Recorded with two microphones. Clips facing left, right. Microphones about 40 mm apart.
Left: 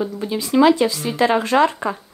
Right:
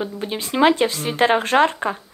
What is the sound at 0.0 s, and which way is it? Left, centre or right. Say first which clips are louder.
Speech: left 3 dB; right.